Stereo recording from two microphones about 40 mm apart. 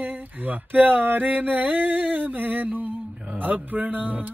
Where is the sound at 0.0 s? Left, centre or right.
Right.